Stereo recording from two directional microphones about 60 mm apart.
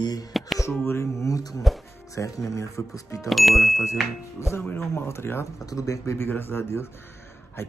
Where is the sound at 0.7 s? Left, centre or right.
Left.